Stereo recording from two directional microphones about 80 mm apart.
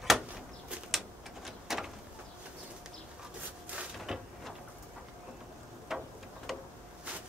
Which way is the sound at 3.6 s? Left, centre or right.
Centre.